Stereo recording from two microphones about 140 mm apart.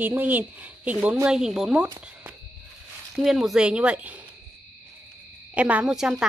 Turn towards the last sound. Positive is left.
turn(degrees=-5)  # may be behind; listen again after turning